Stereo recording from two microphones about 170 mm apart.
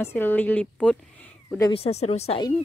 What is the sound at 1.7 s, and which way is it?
Speech, 35° left (ahead or behind).